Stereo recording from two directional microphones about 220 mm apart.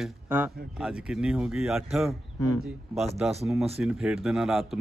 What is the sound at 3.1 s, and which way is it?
Speech, centre (ahead or behind).